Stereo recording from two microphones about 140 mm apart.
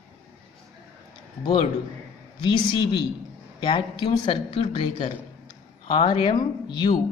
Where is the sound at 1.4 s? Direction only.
35° left (ahead or behind).